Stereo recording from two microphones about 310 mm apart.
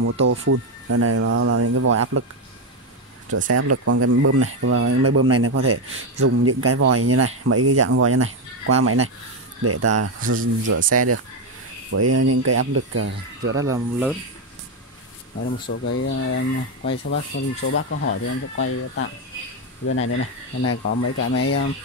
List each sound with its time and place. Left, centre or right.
0.0 s speech: right
3.4 s speech: right
13.6 s speech: centre
15.4 s speech: left
19.9 s speech: left